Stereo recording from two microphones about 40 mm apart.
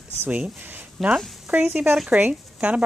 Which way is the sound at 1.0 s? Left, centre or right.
Centre.